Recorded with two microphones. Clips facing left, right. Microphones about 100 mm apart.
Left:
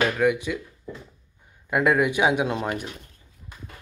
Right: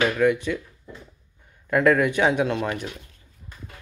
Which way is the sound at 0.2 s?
10° left (ahead or behind).